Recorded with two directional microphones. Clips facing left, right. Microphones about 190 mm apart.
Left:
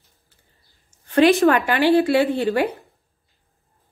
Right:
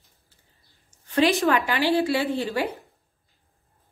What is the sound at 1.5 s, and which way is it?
Speech, 55° left (ahead or behind).